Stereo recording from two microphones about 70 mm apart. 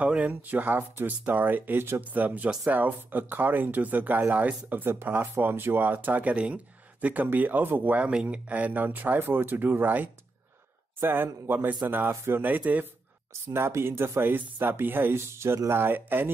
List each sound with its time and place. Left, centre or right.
0.0 s speech: centre
13.5 s speech: right